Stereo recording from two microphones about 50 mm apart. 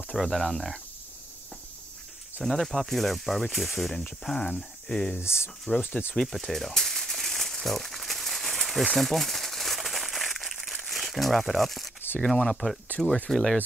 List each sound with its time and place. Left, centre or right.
0.1 s speech: centre
2.4 s speech: centre
4.2 s speech: centre
5.8 s speech: left
6.2 s crumpling: centre
12.3 s speech: centre